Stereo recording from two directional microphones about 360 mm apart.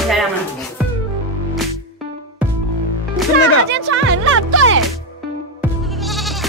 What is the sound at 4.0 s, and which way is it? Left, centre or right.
Speech, right.